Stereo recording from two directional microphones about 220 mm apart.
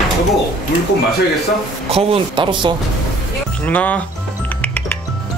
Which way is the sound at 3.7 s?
5° left (ahead or behind).